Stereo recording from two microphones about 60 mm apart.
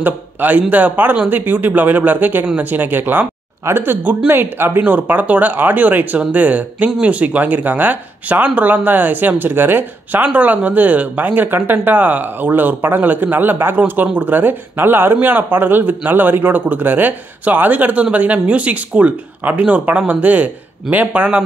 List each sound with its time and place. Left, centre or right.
0.0 s speech: right